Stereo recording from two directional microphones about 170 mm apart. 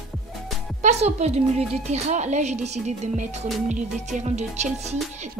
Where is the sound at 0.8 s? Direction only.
40° right (ahead or behind).